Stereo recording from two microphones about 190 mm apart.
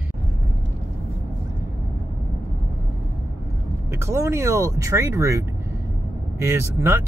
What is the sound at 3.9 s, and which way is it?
Speech, 15° right (ahead or behind).